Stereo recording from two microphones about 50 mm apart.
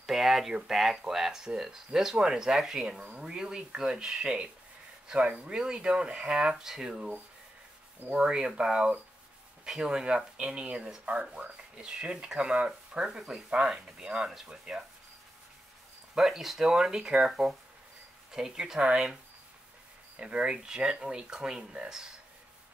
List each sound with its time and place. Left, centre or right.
0.0 s a sound: centre
0.7 s speech: centre
8.1 s speech: centre
16.2 s speech: centre
18.3 s speech: centre
20.2 s speech: right